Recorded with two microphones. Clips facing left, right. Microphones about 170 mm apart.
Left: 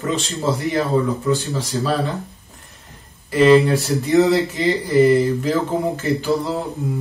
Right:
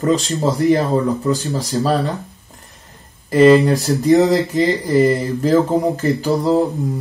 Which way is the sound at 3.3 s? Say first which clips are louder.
Right 2 dB; 40° right (ahead or behind).